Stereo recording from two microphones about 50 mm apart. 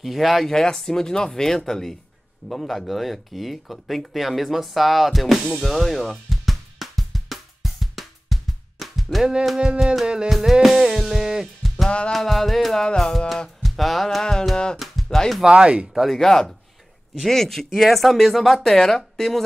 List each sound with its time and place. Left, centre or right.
0.0 s speech: centre
0.5 s speech: centre
2.4 s a sound: centre
9.2 s music: centre
10.3 s music: centre
12.1 s speech: centre
13.6 s music: centre
15.4 s speech: right
16.1 s speech: centre